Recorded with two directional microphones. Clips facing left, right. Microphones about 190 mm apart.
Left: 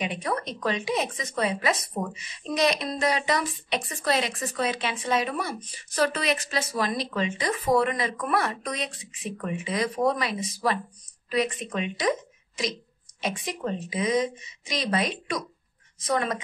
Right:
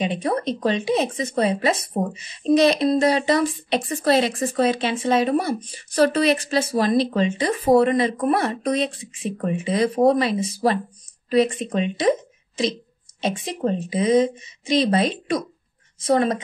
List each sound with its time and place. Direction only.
0.0 s a woman's voice: 30° right (ahead or behind)